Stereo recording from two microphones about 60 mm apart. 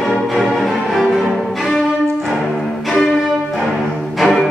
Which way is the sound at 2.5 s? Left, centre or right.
Centre.